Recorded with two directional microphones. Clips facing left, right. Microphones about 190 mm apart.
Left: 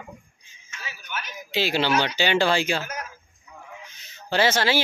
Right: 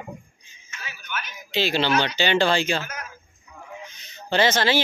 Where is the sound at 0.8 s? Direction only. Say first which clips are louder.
Right 1 dB; 35° left (ahead or behind).